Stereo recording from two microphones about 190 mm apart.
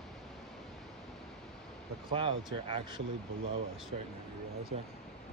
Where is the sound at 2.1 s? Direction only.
25° right (ahead or behind).